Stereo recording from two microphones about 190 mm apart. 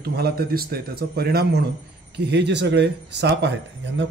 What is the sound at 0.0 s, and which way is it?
A man's voice, 55° right (ahead or behind).